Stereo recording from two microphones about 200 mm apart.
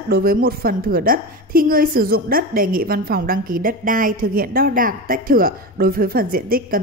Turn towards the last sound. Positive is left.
turn(degrees=-45)  # may be behind; listen again after turning